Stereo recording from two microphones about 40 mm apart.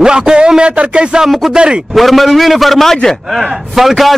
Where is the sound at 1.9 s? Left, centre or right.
Centre.